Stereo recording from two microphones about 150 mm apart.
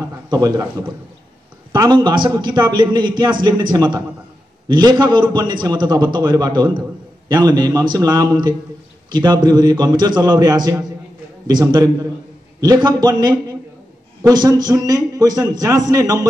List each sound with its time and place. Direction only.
0.3 s a man's voice: 25° right (ahead or behind)